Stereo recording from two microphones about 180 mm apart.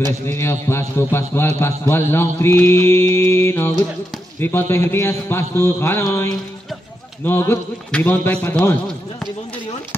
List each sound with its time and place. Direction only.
0.3 s mantra: 15° left (ahead or behind)
7.2 s mantra: 10° left (ahead or behind)